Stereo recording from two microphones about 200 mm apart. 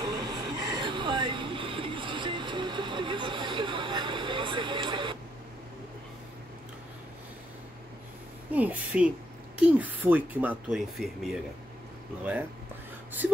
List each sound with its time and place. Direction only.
0.0 s train: 20° right (ahead or behind)
8.5 s speech: 10° right (ahead or behind)